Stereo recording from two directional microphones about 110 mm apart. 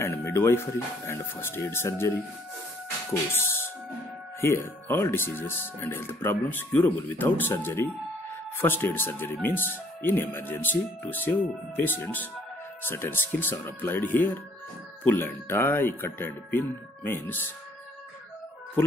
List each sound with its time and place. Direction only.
0.0 s speech: 20° left (ahead or behind)
3.1 s a sound: 20° left (ahead or behind)
4.4 s speech: 20° left (ahead or behind)